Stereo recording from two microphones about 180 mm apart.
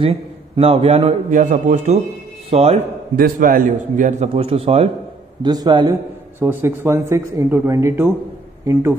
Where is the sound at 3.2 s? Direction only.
50° right (ahead or behind); by 4.8 s 35° right (ahead or behind).